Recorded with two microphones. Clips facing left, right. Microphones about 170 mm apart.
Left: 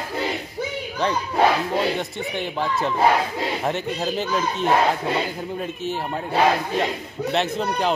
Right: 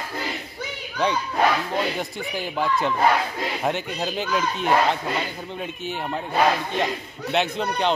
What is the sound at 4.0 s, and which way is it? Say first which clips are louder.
Speech: left 1 dB; centre (ahead or behind).